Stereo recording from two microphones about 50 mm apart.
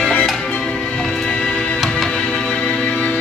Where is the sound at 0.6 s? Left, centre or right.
Centre.